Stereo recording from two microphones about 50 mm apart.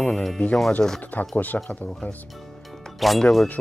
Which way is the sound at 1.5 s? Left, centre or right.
Left.